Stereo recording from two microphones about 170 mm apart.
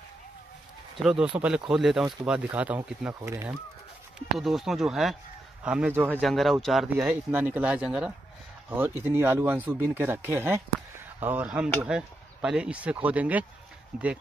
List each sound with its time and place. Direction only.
1.0 s speech: 5° right (ahead or behind)
4.4 s speech: centre (ahead or behind)